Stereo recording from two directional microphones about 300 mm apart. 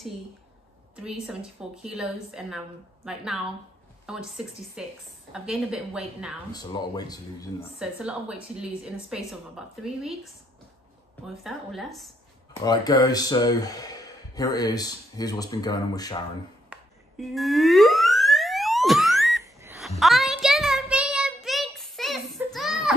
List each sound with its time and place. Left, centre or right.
1.2 s a woman's voice: centre
4.0 s a sound: centre
4.8 s a woman's voice: centre
6.5 s speech: centre
7.8 s a woman's voice: centre
11.2 s a woman's voice: centre
12.6 s speech: centre
16.7 s a sound: centre